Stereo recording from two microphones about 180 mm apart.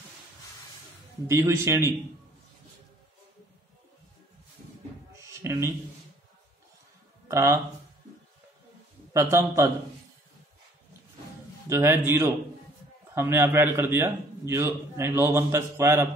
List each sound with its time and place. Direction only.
1.2 s a man's voice: 15° right (ahead or behind)
5.1 s a sound: 15° right (ahead or behind)
7.2 s speech: 15° right (ahead or behind)
9.1 s a man's voice: 15° right (ahead or behind)
11.7 s a man's voice: 15° right (ahead or behind)